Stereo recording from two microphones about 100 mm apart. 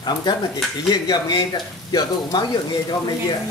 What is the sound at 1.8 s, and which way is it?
Speech, 45° left (ahead or behind).